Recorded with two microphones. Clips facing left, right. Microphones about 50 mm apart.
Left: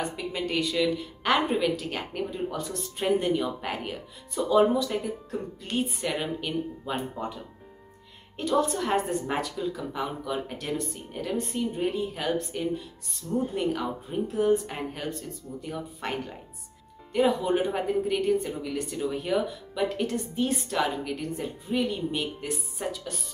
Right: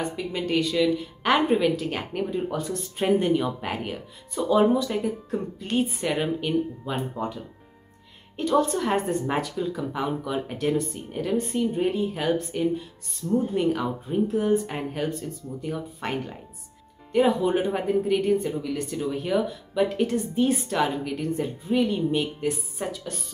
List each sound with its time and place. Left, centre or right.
0.0 s speech: centre
6.9 s speech: centre
8.4 s speech: centre
13.6 s speech: centre